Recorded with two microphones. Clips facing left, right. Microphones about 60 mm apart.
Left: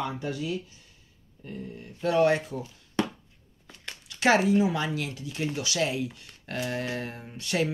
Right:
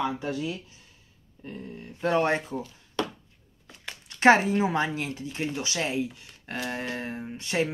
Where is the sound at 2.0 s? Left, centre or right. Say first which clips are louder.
Left 1 dB; right.